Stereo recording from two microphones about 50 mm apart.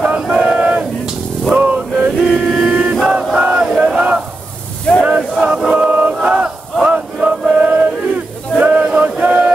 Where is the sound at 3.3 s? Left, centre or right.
Centre.